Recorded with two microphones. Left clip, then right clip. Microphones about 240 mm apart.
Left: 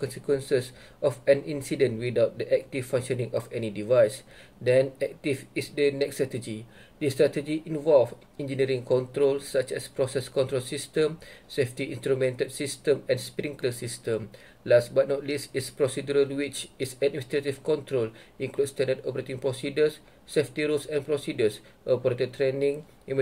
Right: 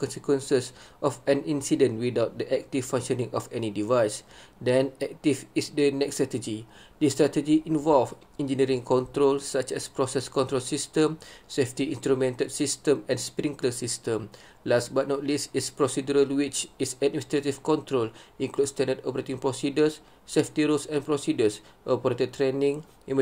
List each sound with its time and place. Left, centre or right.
0.0 s speech: centre